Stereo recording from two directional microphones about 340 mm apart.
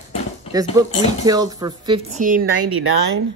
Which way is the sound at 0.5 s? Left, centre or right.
Centre.